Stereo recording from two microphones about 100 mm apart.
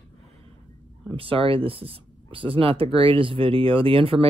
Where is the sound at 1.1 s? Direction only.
65° right (ahead or behind).